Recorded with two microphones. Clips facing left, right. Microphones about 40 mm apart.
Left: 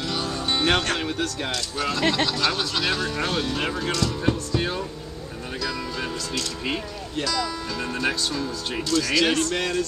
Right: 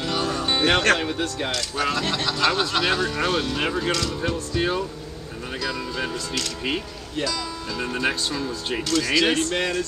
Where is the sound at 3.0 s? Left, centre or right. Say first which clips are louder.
Right 2 dB; centre.